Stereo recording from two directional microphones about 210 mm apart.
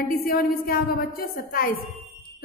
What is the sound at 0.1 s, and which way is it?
A woman's voice, 45° left (ahead or behind).